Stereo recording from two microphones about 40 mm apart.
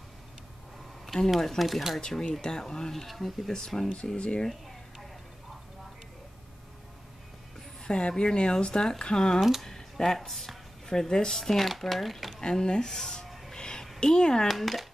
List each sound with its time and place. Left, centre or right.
1.0 s speech: centre
2.0 s speech: centre
3.1 s speech: centre
3.5 s speech: centre
4.2 s speech: left
7.8 s speech: left
9.6 s a sound: centre
10.1 s speech: centre
10.9 s speech: centre
12.4 s speech: centre
13.3 s a sound: centre
13.6 s a sound: centre
13.9 s speech: left
14.5 s speech: centre